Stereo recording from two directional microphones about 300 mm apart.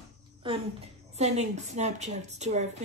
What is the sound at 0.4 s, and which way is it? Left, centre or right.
A woman's voice, centre.